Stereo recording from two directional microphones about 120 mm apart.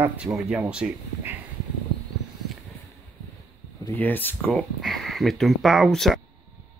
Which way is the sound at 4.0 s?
15° left (ahead or behind).